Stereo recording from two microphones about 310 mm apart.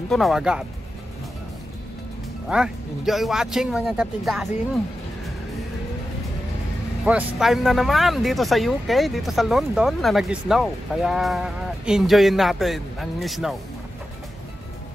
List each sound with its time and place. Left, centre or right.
0.1 s speech: centre
2.5 s speech: centre
7.1 s speech: centre